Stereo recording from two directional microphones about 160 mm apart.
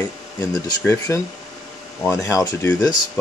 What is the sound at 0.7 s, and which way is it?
Speech, 20° left (ahead or behind).